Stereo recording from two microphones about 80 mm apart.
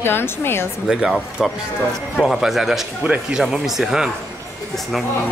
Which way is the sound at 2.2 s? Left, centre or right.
Centre.